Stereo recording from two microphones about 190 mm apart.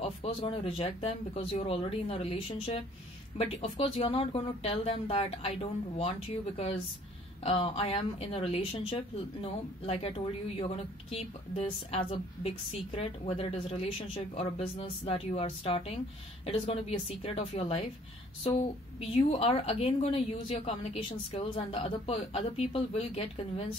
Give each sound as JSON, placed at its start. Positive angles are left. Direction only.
{"t": 0.0, "sound": "a woman's voice", "side_deg": 30}